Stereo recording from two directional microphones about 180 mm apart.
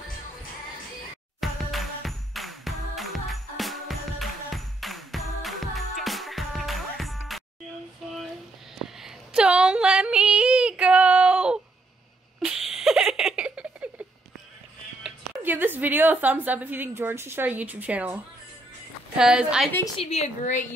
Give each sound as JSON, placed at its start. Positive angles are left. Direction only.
{"t": 1.4, "sound": "music", "side_deg": 0}
{"t": 8.0, "sound": "a sound", "side_deg": 0}
{"t": 8.7, "sound": "yodeling", "side_deg": 0}
{"t": 12.4, "sound": "a sound", "side_deg": 0}
{"t": 15.0, "sound": "a woman's voice", "side_deg": -10}
{"t": 20.0, "sound": "a woman's voice", "side_deg": 35}